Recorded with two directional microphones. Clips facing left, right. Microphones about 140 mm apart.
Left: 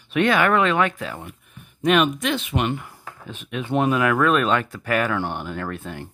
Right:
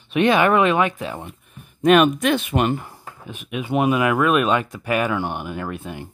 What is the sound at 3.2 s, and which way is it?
Speech, 15° right (ahead or behind).